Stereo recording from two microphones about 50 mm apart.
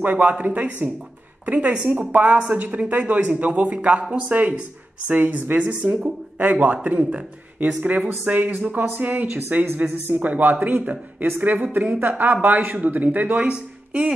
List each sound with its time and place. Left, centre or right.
0.0 s a woman's voice: right
13.5 s speech: centre